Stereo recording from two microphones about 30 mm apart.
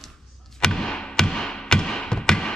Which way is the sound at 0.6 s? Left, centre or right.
Left.